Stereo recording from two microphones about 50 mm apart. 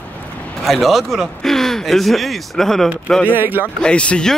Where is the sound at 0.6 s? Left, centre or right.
Centre.